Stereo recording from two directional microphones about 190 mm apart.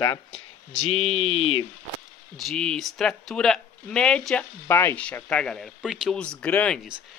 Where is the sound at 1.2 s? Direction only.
90° left.